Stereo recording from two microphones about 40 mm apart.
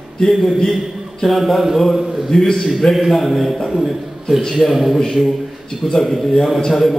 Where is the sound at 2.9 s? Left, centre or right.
Centre.